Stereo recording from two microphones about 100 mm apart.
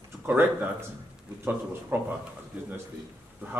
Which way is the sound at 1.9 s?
20° right (ahead or behind).